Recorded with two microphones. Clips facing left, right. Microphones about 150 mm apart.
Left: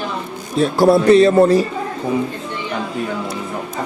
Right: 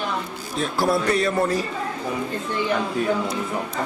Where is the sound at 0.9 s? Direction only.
25° left (ahead or behind).